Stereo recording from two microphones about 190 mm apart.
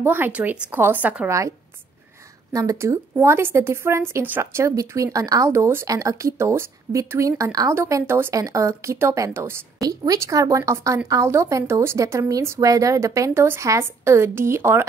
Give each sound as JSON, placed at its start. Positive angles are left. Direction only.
{"t": 0.0, "sound": "speech", "side_deg": -10}
{"t": 2.5, "sound": "speech", "side_deg": -15}